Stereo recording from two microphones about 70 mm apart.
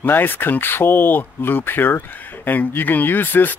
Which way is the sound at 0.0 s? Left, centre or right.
Left.